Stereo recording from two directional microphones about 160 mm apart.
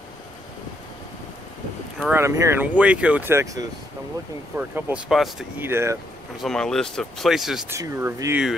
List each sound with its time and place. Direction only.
2.1 s speech: 20° right (ahead or behind); by 5.5 s centre (ahead or behind)
5.6 s speech: 15° right (ahead or behind)
6.4 s speech: 5° left (ahead or behind)
7.7 s speech: 15° right (ahead or behind)